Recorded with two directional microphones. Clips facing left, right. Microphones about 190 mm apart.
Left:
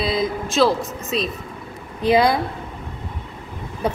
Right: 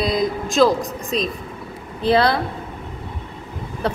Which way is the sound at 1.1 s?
40° right (ahead or behind).